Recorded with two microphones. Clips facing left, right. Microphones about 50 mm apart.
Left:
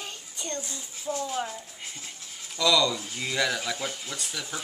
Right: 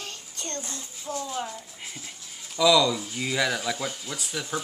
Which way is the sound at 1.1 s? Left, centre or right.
Left.